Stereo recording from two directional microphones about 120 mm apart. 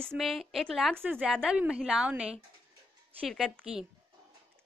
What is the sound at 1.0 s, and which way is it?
A woman's voice, 15° right (ahead or behind).